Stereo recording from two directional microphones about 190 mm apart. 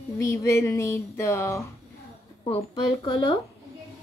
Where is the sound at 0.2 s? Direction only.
15° left (ahead or behind).